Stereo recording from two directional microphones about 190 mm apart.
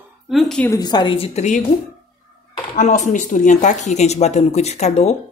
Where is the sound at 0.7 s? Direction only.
20° left (ahead or behind); by 1.6 s 35° left (ahead or behind).